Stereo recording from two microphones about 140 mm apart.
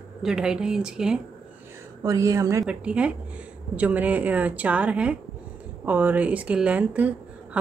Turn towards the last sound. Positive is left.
turn(degrees=-10)  # may be behind; listen again after turning